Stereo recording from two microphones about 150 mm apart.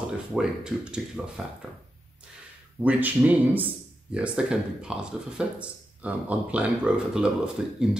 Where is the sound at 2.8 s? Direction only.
10° right (ahead or behind).